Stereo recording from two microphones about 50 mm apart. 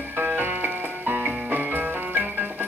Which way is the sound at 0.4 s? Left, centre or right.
Right.